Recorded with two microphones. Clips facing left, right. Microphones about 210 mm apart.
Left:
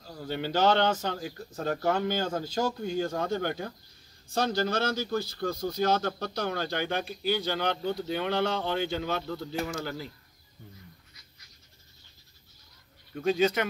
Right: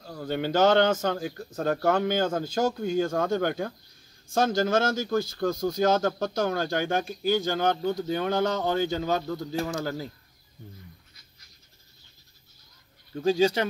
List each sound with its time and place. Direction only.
0.0 s speech: 50° right (ahead or behind)
13.1 s speech: 30° right (ahead or behind)